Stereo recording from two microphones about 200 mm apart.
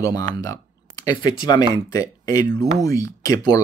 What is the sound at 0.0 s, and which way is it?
Speech, 15° left (ahead or behind).